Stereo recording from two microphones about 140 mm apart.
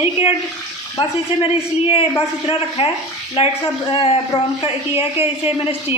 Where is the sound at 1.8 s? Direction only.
40° left (ahead or behind).